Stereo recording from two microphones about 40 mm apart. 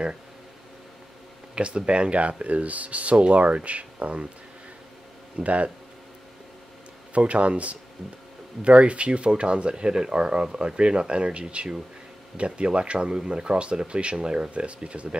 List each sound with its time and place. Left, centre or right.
1.5 s speech: right
5.4 s speech: right
7.2 s speech: right